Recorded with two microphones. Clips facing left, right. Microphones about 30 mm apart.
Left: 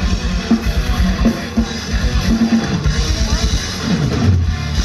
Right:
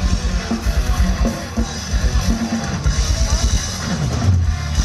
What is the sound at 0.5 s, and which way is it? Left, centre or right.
Music, left.